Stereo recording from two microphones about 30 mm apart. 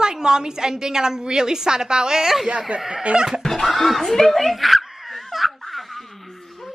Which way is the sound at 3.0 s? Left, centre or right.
Right.